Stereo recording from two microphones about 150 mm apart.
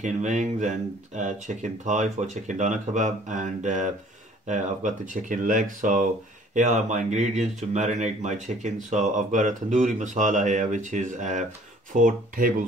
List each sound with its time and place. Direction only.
0.0 s speech: 55° right (ahead or behind)
11.9 s speech: 65° right (ahead or behind)